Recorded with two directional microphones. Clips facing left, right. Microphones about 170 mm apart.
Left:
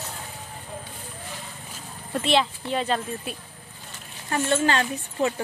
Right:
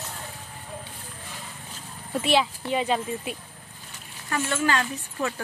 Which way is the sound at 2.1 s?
5° right (ahead or behind).